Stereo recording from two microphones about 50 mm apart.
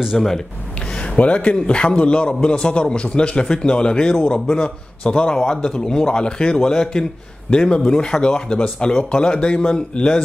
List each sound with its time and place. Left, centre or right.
0.1 s speech: centre
1.1 s a man's voice: left